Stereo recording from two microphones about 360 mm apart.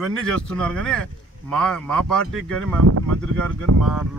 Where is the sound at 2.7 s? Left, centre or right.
Right.